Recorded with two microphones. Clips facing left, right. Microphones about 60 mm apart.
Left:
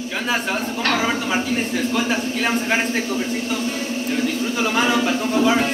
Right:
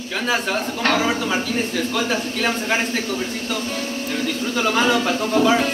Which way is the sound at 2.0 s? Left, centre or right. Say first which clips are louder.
Even; centre.